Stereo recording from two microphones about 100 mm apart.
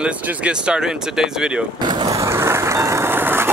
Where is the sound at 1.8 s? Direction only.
45° right (ahead or behind).